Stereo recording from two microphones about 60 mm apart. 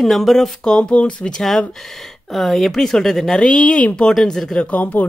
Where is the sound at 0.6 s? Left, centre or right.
Centre.